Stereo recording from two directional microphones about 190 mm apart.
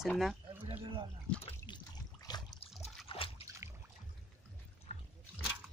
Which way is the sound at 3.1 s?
30° left (ahead or behind).